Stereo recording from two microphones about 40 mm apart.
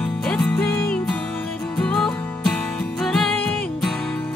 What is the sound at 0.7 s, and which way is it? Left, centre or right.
Music, left.